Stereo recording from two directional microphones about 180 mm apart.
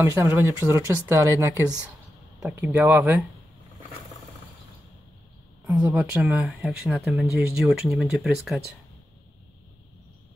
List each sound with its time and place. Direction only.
0.0 s speech: 15° right (ahead or behind)
2.4 s speech: 5° right (ahead or behind)
5.7 s speech: 10° right (ahead or behind)